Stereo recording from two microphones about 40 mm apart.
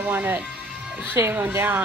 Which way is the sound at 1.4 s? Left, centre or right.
Right.